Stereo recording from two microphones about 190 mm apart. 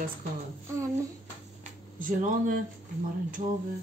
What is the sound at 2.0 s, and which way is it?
Speech, 45° right (ahead or behind).